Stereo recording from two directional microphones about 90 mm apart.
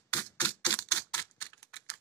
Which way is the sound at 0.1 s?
20° left (ahead or behind).